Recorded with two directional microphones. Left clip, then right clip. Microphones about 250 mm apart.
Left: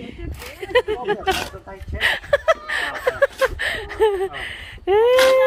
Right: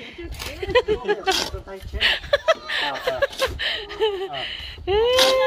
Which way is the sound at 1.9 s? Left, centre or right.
Centre.